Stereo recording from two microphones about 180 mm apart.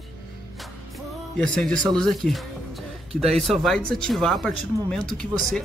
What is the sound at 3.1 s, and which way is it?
Speech, 35° right (ahead or behind).